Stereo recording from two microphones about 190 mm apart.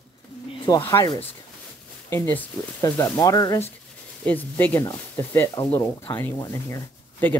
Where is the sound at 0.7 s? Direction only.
15° left (ahead or behind).